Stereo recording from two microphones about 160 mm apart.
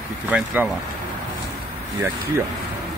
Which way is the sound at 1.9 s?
15° right (ahead or behind).